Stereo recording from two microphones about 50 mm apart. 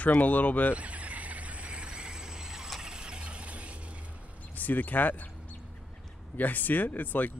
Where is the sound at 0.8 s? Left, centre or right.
Right.